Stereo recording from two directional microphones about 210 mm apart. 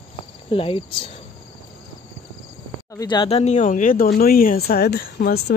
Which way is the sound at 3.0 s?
20° left (ahead or behind).